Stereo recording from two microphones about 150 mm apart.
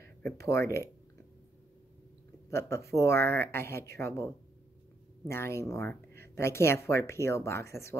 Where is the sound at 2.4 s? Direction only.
20° left (ahead or behind).